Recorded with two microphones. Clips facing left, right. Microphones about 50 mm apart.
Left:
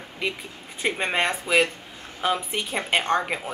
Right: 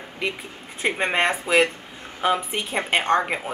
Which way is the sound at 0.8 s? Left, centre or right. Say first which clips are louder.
Right 2 dB; centre.